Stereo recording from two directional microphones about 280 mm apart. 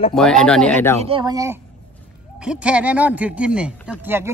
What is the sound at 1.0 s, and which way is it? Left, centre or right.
Speech, centre.